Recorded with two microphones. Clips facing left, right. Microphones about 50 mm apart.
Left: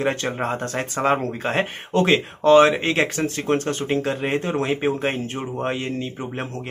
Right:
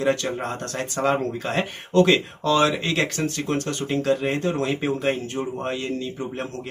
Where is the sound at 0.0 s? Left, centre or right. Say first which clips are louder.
Even; left.